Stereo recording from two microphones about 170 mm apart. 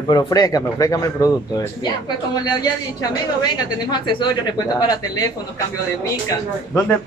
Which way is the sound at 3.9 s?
25° left (ahead or behind).